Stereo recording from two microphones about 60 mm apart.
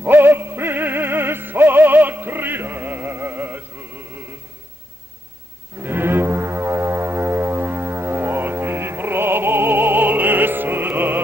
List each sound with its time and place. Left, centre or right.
0.0 s music: right
5.8 s music: right